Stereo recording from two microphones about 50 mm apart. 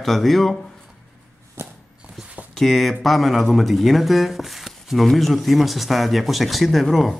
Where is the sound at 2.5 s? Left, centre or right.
Centre.